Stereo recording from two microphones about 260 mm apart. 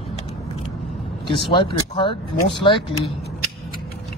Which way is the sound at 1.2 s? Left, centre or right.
Centre.